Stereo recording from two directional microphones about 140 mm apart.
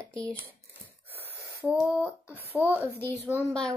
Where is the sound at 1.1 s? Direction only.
15° right (ahead or behind).